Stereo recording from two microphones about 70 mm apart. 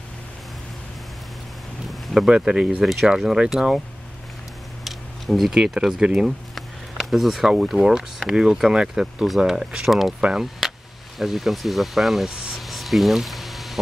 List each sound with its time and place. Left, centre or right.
1.9 s boat: centre
2.3 s speech: centre
2.8 s speech: centre
4.8 s speech: centre
12.4 s a sound: centre